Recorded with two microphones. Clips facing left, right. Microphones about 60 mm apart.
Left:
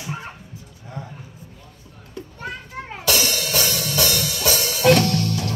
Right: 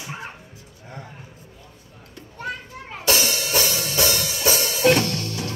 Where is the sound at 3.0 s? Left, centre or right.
Right.